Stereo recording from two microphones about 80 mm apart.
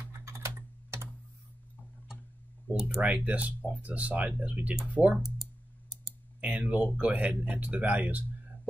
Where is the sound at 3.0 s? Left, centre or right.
Centre.